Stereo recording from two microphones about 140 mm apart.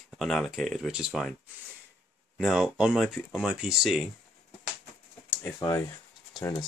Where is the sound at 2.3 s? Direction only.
5° right (ahead or behind).